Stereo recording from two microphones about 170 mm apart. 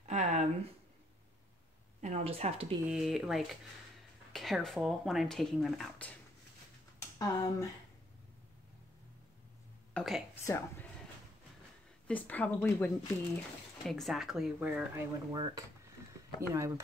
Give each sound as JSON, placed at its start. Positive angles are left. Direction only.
{"t": 0.0, "sound": "a sound", "side_deg": -45}
{"t": 2.0, "sound": "speech", "side_deg": -40}
{"t": 2.9, "sound": "speech", "side_deg": 0}
{"t": 7.0, "sound": "speech", "side_deg": 20}
{"t": 9.9, "sound": "speech", "side_deg": 0}
{"t": 10.4, "sound": "speech", "side_deg": 15}
{"t": 12.1, "sound": "speech", "side_deg": 10}
{"t": 15.0, "sound": "speech", "side_deg": -25}